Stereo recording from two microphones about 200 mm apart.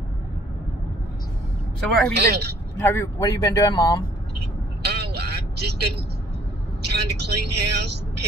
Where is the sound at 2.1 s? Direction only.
55° right (ahead or behind).